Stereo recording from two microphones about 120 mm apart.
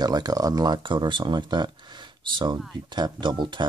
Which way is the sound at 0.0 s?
35° right (ahead or behind).